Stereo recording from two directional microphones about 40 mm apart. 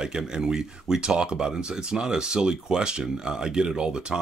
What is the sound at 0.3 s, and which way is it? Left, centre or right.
Speech, centre.